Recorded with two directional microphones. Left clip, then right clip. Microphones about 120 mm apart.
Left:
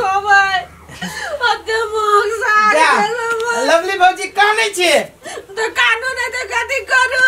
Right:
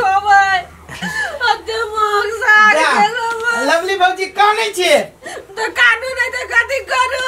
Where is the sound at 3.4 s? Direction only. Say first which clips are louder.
Left 1 dB; centre (ahead or behind).